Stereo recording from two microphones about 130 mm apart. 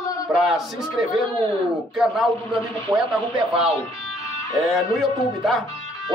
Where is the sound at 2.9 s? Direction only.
35° right (ahead or behind).